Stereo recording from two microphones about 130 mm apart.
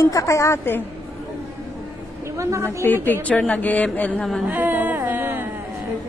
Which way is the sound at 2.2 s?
20° right (ahead or behind).